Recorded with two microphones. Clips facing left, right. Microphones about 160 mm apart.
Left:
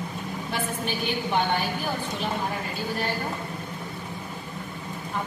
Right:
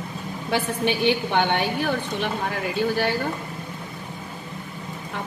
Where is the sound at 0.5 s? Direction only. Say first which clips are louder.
Right 7 dB; 70° right (ahead or behind).